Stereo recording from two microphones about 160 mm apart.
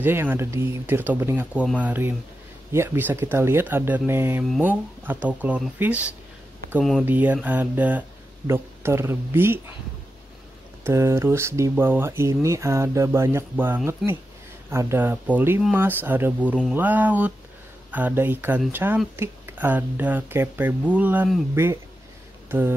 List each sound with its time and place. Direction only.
0.0 s speech: 15° right (ahead or behind)
6.8 s speech: centre (ahead or behind)
7.1 s speech: 10° right (ahead or behind)
10.8 s speech: 15° right (ahead or behind)
14.0 s speech: centre (ahead or behind)
14.7 s speech: 15° right (ahead or behind)